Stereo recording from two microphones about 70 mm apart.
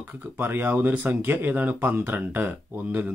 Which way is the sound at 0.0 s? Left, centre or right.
Right.